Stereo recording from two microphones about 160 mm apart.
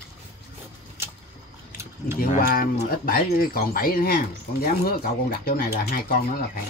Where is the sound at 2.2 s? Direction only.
65° left (ahead or behind).